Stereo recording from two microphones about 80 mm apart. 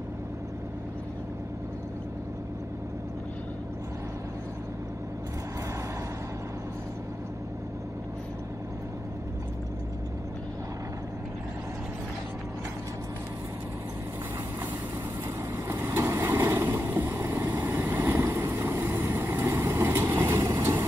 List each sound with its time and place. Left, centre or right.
15.5 s vehicle: right
20.4 s vehicle: right